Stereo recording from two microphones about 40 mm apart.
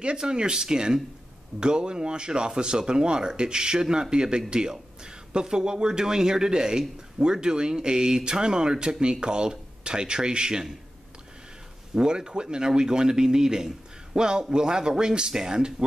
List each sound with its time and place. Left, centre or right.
0.0 s speech: right
11.9 s speech: centre